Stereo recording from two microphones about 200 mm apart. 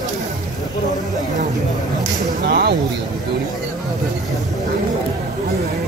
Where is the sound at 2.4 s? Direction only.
55° right (ahead or behind).